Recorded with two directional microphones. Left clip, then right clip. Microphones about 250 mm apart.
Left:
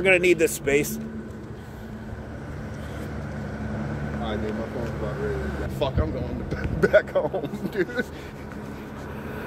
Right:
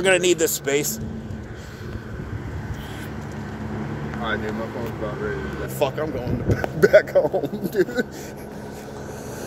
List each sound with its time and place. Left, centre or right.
0.0 s a man's voice: centre
5.8 s speech: right